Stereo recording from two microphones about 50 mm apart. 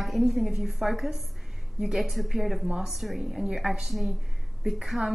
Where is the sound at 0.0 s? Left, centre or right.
Centre.